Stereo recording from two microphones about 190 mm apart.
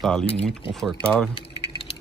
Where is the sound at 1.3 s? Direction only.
30° left (ahead or behind).